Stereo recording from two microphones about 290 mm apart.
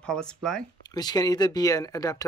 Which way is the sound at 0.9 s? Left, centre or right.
Centre.